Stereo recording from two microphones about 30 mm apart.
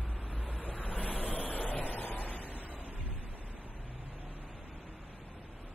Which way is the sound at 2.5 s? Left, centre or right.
Left.